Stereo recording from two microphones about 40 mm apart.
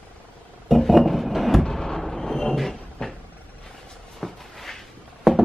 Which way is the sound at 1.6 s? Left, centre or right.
Centre.